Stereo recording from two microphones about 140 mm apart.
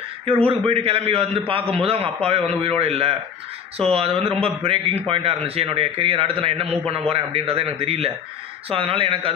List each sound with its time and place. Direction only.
0.2 s a man's voice: 40° right (ahead or behind)